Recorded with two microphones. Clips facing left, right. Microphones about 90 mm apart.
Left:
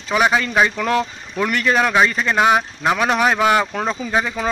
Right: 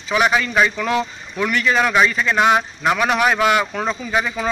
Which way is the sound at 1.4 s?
45° left (ahead or behind).